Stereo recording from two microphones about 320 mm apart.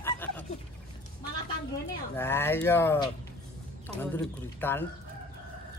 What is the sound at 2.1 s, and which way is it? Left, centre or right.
Speech, centre.